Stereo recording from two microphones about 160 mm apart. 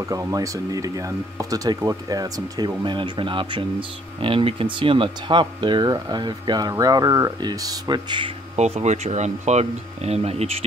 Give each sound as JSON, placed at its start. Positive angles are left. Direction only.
{"t": 0.0, "sound": "speech", "side_deg": -20}
{"t": 8.5, "sound": "speech", "side_deg": -45}